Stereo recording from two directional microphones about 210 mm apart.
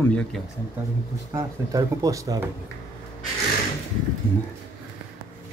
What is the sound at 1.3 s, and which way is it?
Speech, 15° right (ahead or behind).